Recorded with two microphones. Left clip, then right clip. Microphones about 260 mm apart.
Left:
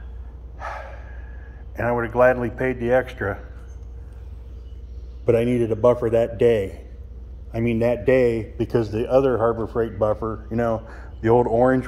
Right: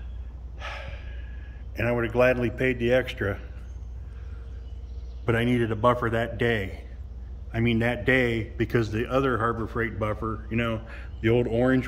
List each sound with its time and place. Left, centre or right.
0.6 s gasp: centre
1.8 s speech: centre
5.2 s a man's voice: centre
8.6 s speech: centre